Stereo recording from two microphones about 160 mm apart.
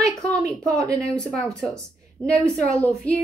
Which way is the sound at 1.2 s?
5° left (ahead or behind).